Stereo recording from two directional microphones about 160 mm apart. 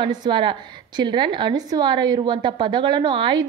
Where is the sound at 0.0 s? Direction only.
30° right (ahead or behind).